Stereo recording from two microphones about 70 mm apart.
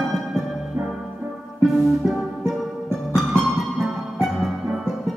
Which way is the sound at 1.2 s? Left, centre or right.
Right.